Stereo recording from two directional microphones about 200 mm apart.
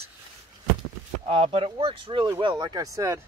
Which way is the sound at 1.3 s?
30° right (ahead or behind).